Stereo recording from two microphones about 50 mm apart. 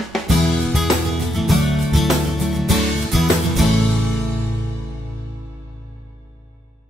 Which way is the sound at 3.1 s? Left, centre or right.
Centre.